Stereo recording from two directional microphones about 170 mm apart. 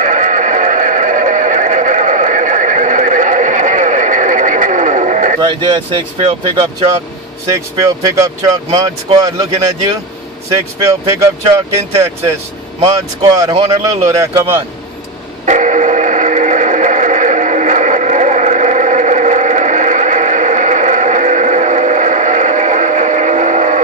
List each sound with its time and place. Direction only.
0.0 s neigh: 50° right (ahead or behind)
5.4 s speech: 30° right (ahead or behind)
8.7 s speech: 20° right (ahead or behind)
10.8 s speech: 20° right (ahead or behind)
15.4 s radio: 45° right (ahead or behind)